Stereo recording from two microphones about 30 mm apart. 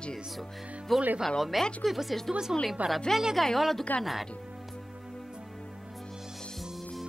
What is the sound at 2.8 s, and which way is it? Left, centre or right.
Speech, right.